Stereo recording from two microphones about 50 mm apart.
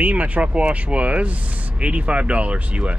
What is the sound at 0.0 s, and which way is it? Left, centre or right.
Speech, right.